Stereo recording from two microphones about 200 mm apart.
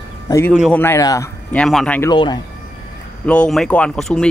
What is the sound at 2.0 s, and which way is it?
Speech, 20° left (ahead or behind).